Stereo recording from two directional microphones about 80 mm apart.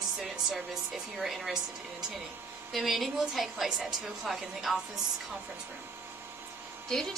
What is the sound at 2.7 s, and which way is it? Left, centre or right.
A woman's voice, centre.